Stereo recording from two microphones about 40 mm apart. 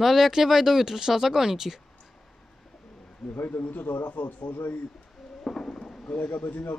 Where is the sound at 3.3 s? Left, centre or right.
Left.